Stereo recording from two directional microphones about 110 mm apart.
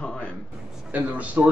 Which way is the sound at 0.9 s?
15° right (ahead or behind).